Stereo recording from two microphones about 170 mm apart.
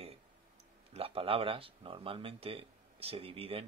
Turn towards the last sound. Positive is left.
turn(degrees=-35)  # may be behind; listen again after turning